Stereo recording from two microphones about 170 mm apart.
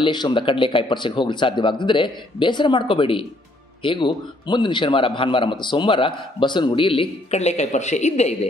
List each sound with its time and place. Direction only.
0.0 s a man's voice: 25° left (ahead or behind)